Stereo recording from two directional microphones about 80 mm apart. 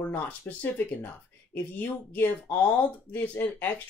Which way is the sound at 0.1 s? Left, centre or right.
Left.